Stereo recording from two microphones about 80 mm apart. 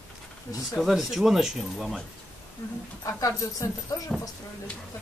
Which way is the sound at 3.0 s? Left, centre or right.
Left.